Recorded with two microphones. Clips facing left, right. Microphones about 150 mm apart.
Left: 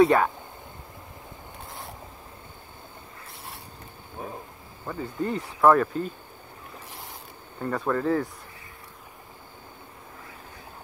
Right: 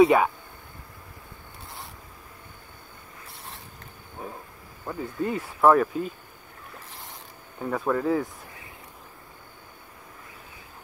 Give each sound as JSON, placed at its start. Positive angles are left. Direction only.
{"t": 0.0, "sound": "speech", "side_deg": -5}
{"t": 4.2, "sound": "a sound", "side_deg": 20}
{"t": 4.8, "sound": "speech", "side_deg": -10}
{"t": 7.6, "sound": "speech", "side_deg": -5}